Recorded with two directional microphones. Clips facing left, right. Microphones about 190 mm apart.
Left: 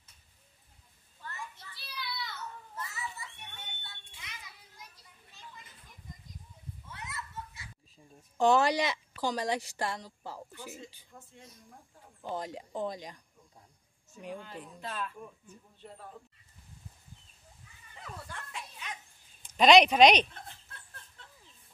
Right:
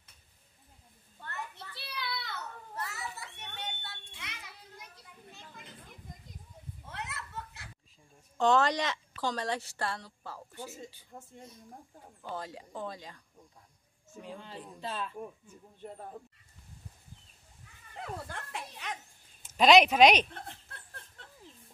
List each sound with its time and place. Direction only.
1.2 s children playing: 65° right (ahead or behind)
5.3 s a sound: 60° right (ahead or behind)
6.9 s children playing: 65° right (ahead or behind)
8.4 s speech: 10° left (ahead or behind)
11.1 s speech: 40° right (ahead or behind)
12.2 s speech: 15° left (ahead or behind)
14.4 s speech: 30° right (ahead or behind)
15.4 s speech: 50° right (ahead or behind)
18.1 s speech: 45° right (ahead or behind)
18.5 s a sound: 65° right (ahead or behind)
19.4 s speech: 5° right (ahead or behind)
20.3 s chuckle: 50° right (ahead or behind)